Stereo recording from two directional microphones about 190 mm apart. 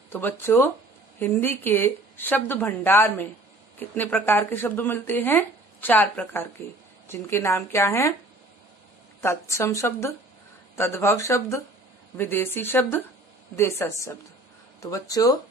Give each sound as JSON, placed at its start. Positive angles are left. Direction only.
{"t": 0.1, "sound": "speech", "side_deg": 10}
{"t": 9.2, "sound": "speech", "side_deg": 15}